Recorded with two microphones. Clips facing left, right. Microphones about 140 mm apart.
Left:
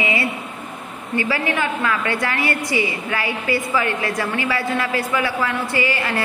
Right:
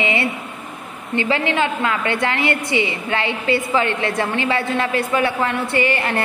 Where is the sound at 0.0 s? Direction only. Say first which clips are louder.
Right 2 dB; 25° right (ahead or behind).